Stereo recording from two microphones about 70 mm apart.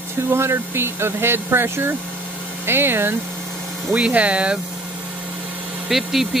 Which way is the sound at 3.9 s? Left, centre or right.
Centre.